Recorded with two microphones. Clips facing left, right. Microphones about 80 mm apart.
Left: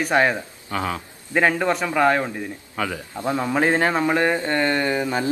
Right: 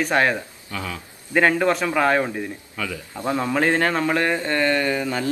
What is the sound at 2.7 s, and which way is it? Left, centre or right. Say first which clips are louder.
Speech: left 5 dB; left.